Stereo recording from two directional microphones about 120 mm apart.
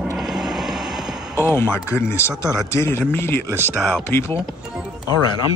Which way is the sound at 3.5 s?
20° right (ahead or behind).